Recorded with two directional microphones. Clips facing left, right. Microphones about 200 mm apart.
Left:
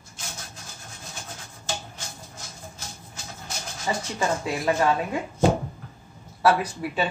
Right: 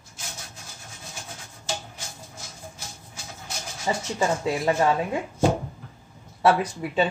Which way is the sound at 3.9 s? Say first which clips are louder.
Right 1 dB; 20° right (ahead or behind).